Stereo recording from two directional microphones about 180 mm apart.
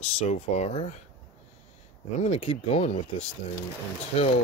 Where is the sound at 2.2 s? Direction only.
35° left (ahead or behind).